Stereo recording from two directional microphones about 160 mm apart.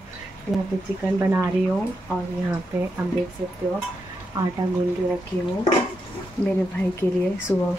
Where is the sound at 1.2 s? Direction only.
15° right (ahead or behind).